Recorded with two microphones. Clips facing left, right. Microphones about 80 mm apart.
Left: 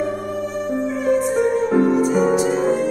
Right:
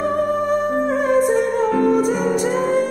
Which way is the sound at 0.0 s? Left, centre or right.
Right.